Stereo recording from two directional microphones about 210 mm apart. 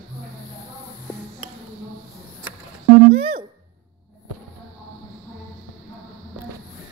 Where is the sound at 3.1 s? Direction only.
25° right (ahead or behind).